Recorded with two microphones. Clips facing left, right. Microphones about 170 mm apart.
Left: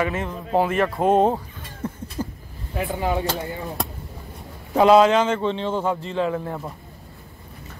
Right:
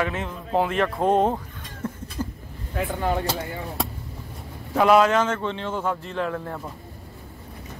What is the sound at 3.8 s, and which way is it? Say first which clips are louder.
Vehicle: right 3 dB; centre (ahead or behind).